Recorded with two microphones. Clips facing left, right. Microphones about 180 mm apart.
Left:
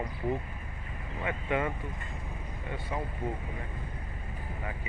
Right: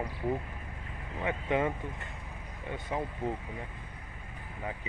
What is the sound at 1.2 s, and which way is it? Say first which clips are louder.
Speech: right 1 dB; 20° right (ahead or behind).